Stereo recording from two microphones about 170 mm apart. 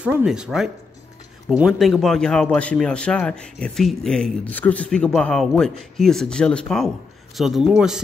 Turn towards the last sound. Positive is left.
turn(degrees=-5)  # may be behind; listen again after turning